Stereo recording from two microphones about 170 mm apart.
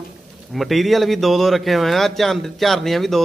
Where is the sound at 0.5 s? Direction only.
Centre (ahead or behind).